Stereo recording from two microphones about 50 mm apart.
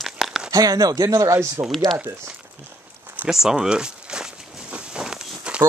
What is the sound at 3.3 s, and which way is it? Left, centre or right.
Walk, centre.